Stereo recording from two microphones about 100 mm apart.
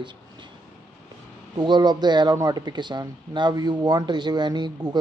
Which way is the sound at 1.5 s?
50° right (ahead or behind).